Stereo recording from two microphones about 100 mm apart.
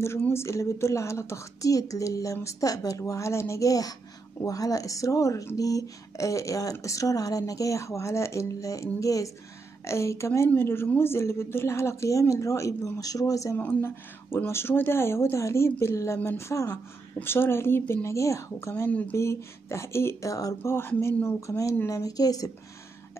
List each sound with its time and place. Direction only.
0.0 s a woman's voice: 25° left (ahead or behind)
13.6 s a woman's voice: 15° left (ahead or behind)
18.9 s speech: 15° left (ahead or behind)
19.1 s a woman's voice: 25° left (ahead or behind)
20.7 s a woman's voice: 25° left (ahead or behind)